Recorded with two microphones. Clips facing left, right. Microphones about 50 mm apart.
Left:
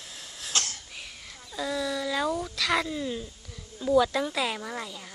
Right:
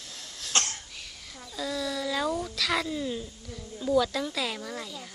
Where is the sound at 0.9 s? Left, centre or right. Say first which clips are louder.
Left 2 dB; centre.